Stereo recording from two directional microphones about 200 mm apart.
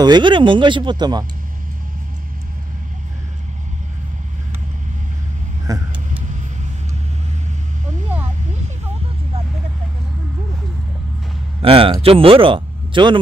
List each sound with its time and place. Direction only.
0.0 s a man's voice: 20° right (ahead or behind)
5.7 s vehicle: 15° right (ahead or behind)
11.6 s a man's voice: 25° right (ahead or behind)